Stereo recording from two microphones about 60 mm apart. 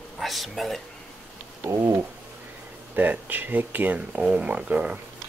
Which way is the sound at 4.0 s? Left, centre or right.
Centre.